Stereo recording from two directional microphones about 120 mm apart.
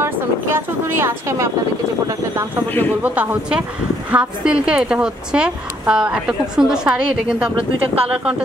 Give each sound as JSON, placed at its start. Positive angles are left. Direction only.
{"t": 0.0, "sound": "speech", "side_deg": -20}
{"t": 3.0, "sound": "a woman's voice", "side_deg": -10}